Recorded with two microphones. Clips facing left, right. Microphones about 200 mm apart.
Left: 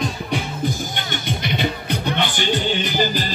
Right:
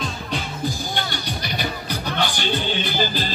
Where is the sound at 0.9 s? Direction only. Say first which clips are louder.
Left 1 dB; 20° left (ahead or behind).